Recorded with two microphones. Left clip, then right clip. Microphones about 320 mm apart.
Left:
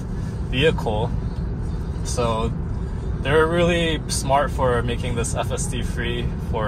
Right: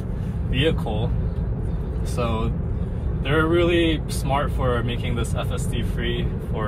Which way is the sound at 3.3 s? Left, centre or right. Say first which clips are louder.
Left 2 dB; left.